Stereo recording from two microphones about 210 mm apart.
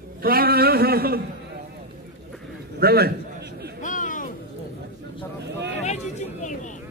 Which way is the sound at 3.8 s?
40° left (ahead or behind).